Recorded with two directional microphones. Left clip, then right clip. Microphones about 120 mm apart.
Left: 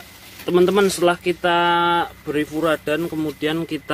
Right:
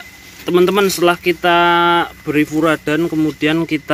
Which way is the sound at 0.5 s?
5° right (ahead or behind).